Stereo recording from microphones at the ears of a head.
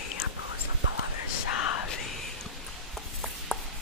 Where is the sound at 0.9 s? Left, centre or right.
Left.